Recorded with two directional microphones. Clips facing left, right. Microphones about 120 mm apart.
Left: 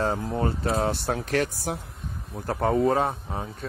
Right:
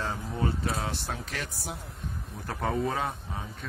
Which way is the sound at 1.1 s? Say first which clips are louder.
Left 11 dB; 55° left (ahead or behind).